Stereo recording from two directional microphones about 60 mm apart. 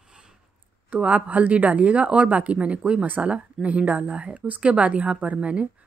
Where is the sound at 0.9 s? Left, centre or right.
Right.